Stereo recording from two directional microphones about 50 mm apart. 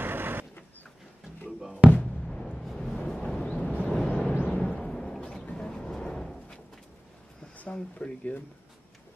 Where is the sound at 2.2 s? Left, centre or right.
Centre.